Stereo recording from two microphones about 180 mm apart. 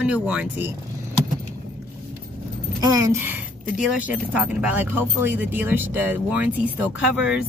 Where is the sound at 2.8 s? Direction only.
20° right (ahead or behind).